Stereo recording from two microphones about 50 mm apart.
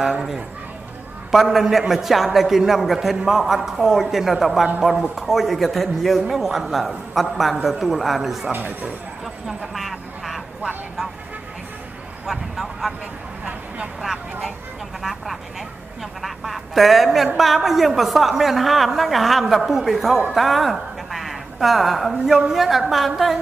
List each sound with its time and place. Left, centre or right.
1.3 s a man's voice: centre
8.5 s speech: right
9.2 s a sound: centre
12.3 s speech: centre
15.0 s vehicle: centre
16.0 s a sound: centre
17.4 s a man's voice: centre
21.1 s a sound: centre
22.4 s a man's voice: centre